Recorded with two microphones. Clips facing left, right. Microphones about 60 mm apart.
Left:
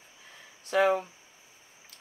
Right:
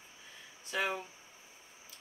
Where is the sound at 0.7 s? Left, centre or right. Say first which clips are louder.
Left 11 dB; left.